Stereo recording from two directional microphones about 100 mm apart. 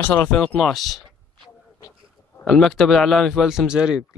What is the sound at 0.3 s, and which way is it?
Speech, 10° left (ahead or behind).